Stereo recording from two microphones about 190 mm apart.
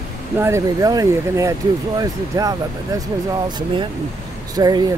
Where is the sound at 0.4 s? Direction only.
15° right (ahead or behind).